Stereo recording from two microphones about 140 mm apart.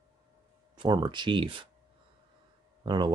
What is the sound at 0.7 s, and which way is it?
Speech, 35° right (ahead or behind).